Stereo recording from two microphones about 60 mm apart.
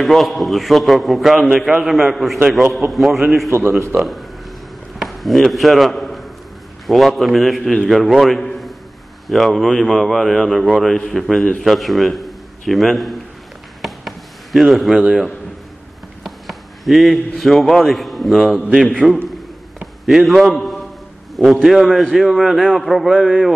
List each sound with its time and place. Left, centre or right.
0.0 s a man's voice: centre
3.4 s speech: right
4.9 s a sound: centre
6.9 s a man's voice: centre
13.7 s chop: centre
15.0 s a man's voice: centre
16.3 s a man's voice: centre
19.0 s a man's voice: centre
20.1 s a man's voice: centre
23.1 s a man's voice: centre